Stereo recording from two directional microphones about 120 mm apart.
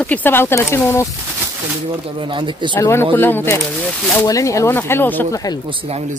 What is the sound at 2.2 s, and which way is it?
Speech, 45° right (ahead or behind).